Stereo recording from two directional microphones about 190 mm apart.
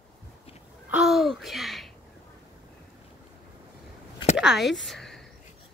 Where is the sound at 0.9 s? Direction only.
Centre (ahead or behind).